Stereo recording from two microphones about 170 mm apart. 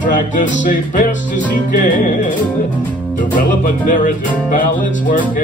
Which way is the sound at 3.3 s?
50° left (ahead or behind).